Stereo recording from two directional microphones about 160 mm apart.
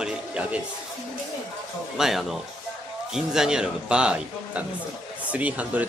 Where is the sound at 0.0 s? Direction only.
5° right (ahead or behind).